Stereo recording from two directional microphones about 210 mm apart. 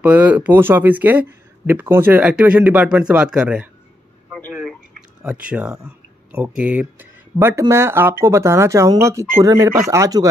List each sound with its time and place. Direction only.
0.0 s speech: 10° right (ahead or behind)
5.2 s speech: 5° right (ahead or behind)